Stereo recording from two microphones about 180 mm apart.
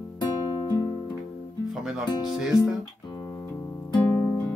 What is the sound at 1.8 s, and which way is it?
Music, centre (ahead or behind).